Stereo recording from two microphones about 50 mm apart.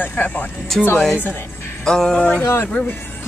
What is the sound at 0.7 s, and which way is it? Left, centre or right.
Speech, centre.